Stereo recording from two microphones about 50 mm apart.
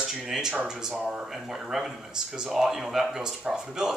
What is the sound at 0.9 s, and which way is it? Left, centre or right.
Speech, right.